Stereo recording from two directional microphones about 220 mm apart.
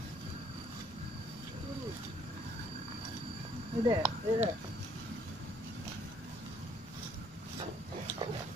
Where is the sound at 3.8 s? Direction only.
20° right (ahead or behind).